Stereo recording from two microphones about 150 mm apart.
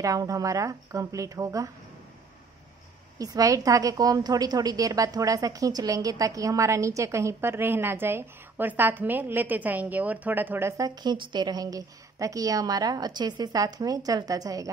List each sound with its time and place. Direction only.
0.0 s a woman's voice: 20° right (ahead or behind)
3.2 s a woman's voice: 25° right (ahead or behind)
11.0 s a woman's voice: 30° right (ahead or behind)